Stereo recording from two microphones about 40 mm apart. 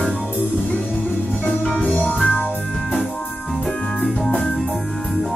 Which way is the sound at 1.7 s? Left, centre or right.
Left.